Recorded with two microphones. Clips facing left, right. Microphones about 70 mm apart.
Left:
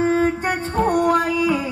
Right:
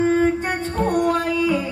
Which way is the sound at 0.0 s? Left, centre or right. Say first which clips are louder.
Even; centre.